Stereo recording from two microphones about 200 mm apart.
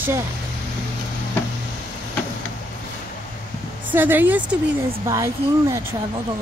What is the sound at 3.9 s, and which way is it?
Speech, 10° right (ahead or behind).